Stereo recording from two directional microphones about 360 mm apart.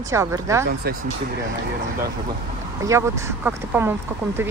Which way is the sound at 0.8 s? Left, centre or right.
Right.